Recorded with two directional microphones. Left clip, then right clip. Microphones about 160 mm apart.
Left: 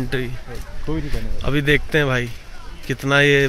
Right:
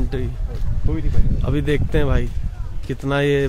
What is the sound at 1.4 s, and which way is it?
A man's voice, 15° right (ahead or behind).